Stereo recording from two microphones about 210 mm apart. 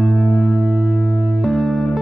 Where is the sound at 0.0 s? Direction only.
Centre (ahead or behind).